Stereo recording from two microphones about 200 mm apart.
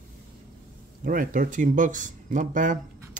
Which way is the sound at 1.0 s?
45° right (ahead or behind).